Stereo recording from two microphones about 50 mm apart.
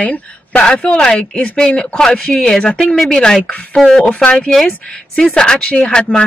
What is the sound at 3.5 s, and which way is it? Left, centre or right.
Speech, left.